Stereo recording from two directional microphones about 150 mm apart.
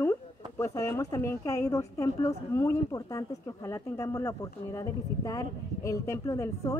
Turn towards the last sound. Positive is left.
turn(degrees=20)  # may be behind; listen again after turning